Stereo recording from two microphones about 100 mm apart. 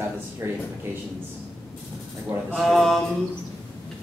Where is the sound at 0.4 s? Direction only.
25° right (ahead or behind).